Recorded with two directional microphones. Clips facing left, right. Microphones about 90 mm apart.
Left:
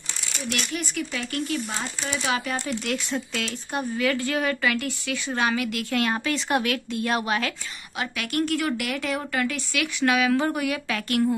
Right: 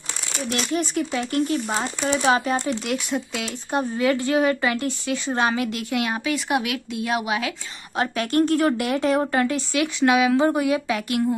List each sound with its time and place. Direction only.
0.7 s speech: 30° right (ahead or behind)
2.7 s a woman's voice: 20° right (ahead or behind)
7.9 s a woman's voice: 35° right (ahead or behind); by 11.2 s 20° right (ahead or behind)